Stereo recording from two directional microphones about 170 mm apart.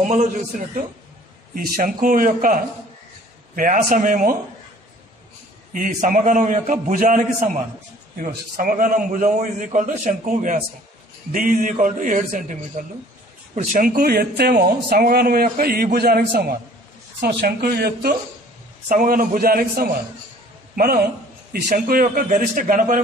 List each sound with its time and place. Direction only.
0.2 s a man's voice: 50° right (ahead or behind)
5.7 s a man's voice: 50° right (ahead or behind)
13.7 s speech: 60° right (ahead or behind)
18.9 s a man's voice: 55° right (ahead or behind)